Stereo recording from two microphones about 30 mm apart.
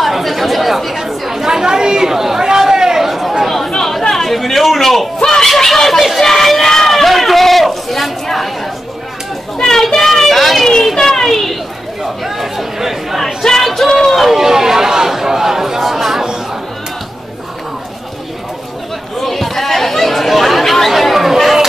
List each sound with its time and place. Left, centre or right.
0.0 s chatter: centre
1.4 s chatter: centre
3.0 s chatter: centre
4.1 s a sound: centre
6.9 s chatter: centre
9.6 s children playing: centre
12.2 s chatter: centre
13.2 s chatter: centre
13.7 s a sound: centre
14.2 s a sound: centre
19.2 s chatter: centre